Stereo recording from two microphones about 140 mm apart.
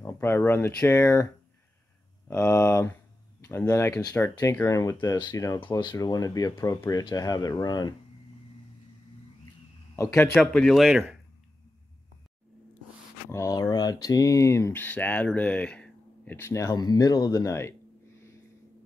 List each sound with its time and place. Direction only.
0.0 s speech: 15° left (ahead or behind)
2.2 s speech: 20° left (ahead or behind)
9.9 s a man's voice: 15° left (ahead or behind)
10.3 s speech: 5° left (ahead or behind)
13.3 s speech: 25° left (ahead or behind)